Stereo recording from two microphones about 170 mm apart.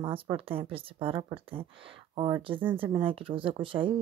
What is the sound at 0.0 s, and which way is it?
Speech, 30° right (ahead or behind).